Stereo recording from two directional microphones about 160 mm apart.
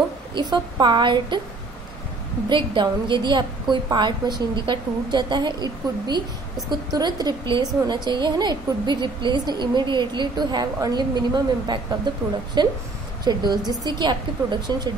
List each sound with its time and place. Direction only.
0.3 s a woman's voice: 25° right (ahead or behind)
2.5 s a woman's voice: 30° right (ahead or behind)